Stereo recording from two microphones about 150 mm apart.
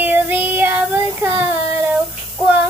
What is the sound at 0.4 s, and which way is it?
Child singing, 15° right (ahead or behind).